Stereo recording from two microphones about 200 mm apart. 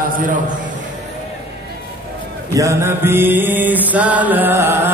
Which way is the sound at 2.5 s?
15° right (ahead or behind).